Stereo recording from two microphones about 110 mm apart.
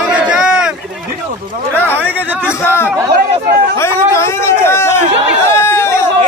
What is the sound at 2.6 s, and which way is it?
Chatter, 20° left (ahead or behind).